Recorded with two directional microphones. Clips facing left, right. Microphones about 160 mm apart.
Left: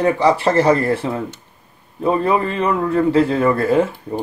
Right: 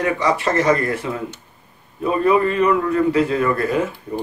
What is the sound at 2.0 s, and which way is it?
A man's voice, 30° left (ahead or behind).